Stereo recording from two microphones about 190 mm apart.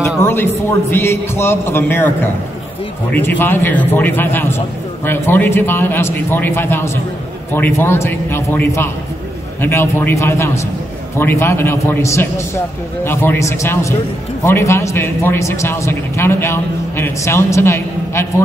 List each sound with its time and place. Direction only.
0.2 s a man's voice: 10° left (ahead or behind)